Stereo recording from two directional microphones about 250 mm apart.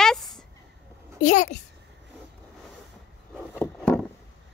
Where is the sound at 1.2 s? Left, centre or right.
Left.